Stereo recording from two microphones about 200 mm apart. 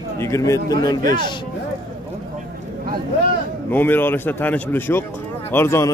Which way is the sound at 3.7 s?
10° left (ahead or behind).